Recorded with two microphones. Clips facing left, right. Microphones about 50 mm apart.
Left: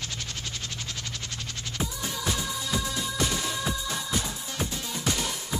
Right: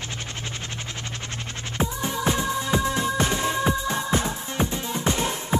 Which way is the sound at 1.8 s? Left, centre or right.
Right.